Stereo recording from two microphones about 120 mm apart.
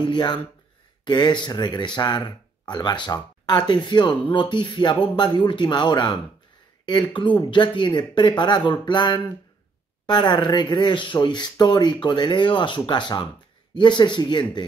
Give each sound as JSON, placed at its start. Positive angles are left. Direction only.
{"t": 0.0, "sound": "speech", "side_deg": 40}